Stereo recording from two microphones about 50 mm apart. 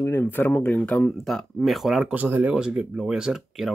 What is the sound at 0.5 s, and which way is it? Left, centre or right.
Speech, left.